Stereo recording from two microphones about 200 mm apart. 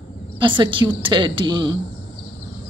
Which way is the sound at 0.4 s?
25° right (ahead or behind).